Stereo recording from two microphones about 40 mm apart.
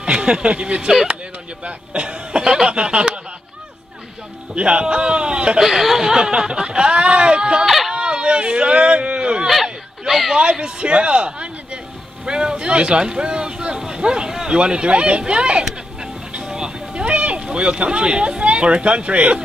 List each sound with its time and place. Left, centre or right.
0.0 s speech: right
4.6 s speech: right
5.6 s speech: centre; by 7.6 s right
7.6 s speech: centre
7.9 s speech: right
9.5 s a sound: centre
10.3 s speech: right